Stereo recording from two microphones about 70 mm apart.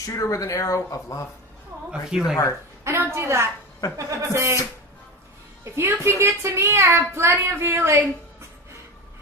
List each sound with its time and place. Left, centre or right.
0.0 s speech: left
1.9 s a woman's voice: centre
2.8 s speech: right
5.6 s speech: right